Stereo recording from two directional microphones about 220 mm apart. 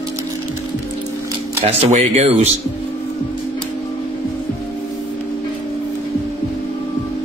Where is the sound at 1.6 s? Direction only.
30° right (ahead or behind).